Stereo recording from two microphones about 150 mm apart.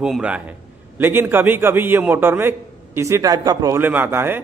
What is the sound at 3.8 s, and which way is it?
Speech, 10° right (ahead or behind).